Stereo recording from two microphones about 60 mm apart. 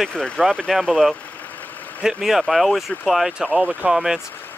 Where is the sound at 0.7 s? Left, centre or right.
Centre.